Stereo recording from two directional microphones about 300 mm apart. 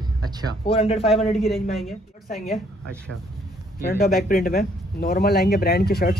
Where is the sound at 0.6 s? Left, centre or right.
Centre.